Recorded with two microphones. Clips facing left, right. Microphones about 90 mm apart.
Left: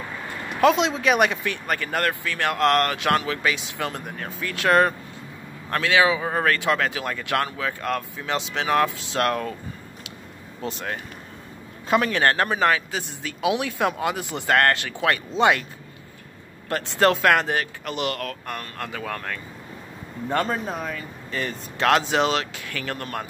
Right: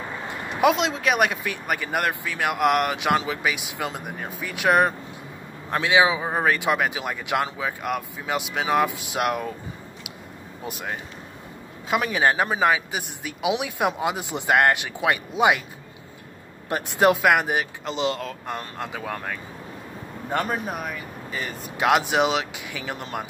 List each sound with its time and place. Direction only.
0.3 s vehicle: 15° right (ahead or behind)
0.7 s speech: centre (ahead or behind)
10.6 s speech: 10° right (ahead or behind)
16.6 s speech: 15° right (ahead or behind)